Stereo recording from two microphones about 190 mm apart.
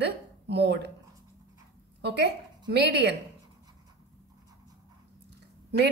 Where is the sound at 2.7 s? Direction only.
60° right (ahead or behind).